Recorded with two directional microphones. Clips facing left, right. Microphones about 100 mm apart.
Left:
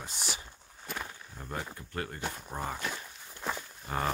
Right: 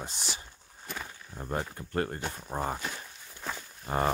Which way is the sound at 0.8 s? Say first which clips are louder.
Left 1 dB; 5° left (ahead or behind).